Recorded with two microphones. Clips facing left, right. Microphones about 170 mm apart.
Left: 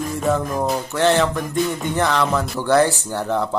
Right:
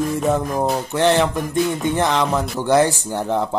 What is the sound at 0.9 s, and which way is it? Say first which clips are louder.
Speech: even; 15° right (ahead or behind).